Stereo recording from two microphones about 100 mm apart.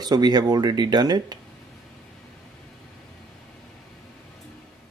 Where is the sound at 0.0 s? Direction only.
45° right (ahead or behind).